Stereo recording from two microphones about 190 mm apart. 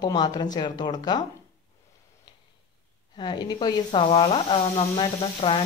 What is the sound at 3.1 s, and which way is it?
Speech, 25° left (ahead or behind).